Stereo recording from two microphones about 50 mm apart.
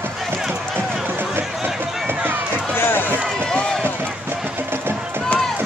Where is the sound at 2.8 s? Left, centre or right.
Left.